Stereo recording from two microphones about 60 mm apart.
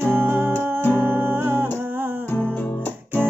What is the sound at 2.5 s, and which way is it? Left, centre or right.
Music, left.